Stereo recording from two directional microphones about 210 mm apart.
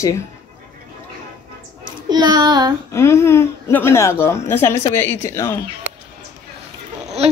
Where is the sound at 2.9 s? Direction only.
10° left (ahead or behind).